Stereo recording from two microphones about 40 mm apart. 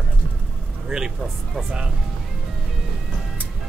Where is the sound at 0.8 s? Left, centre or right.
Centre.